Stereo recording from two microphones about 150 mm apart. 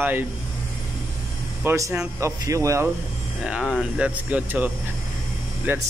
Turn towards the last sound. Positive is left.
turn(degrees=-10)  # may be behind; listen again after turning